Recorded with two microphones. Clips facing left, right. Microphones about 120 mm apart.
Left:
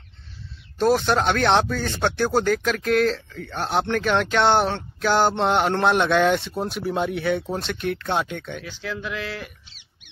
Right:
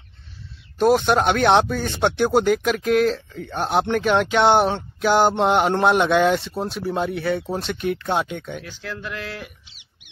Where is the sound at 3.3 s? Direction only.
15° right (ahead or behind).